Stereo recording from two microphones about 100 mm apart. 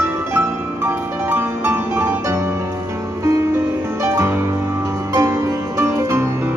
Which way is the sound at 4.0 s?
25° right (ahead or behind).